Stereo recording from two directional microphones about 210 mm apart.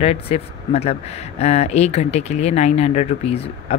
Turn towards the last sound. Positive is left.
turn(degrees=30)  # may be behind; listen again after turning